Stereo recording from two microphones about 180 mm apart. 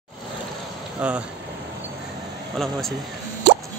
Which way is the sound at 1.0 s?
5° right (ahead or behind).